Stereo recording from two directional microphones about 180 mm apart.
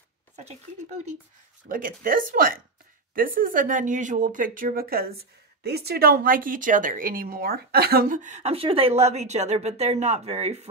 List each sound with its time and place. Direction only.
1.7 s speech: 50° right (ahead or behind)